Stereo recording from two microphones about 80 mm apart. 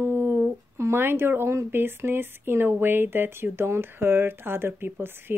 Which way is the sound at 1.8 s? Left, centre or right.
Right.